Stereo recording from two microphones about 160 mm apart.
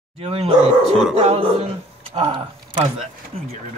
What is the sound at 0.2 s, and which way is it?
Speech, 35° right (ahead or behind).